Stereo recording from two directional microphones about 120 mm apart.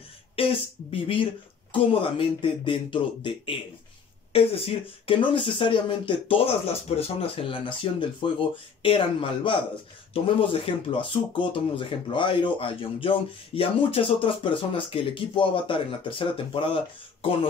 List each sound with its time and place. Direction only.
0.4 s speech: 50° left (ahead or behind)